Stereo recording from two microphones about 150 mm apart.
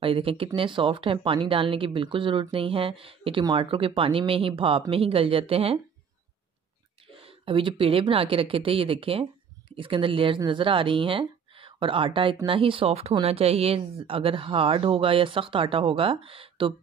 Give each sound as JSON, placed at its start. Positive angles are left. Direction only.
{"t": 0.0, "sound": "speech", "side_deg": -40}
{"t": 7.2, "sound": "speech", "side_deg": -35}